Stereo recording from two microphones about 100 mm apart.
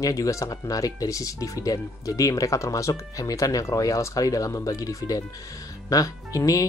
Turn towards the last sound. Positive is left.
turn(degrees=35)  # may be behind; listen again after turning